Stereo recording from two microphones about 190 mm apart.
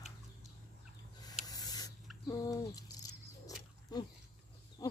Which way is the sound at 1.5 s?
20° left (ahead or behind).